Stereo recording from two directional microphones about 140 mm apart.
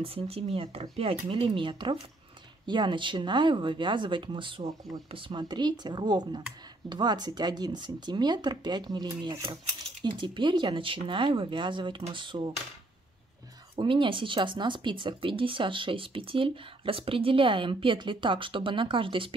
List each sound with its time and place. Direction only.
0.0 s speech: 40° right (ahead or behind)
13.7 s speech: 35° right (ahead or behind)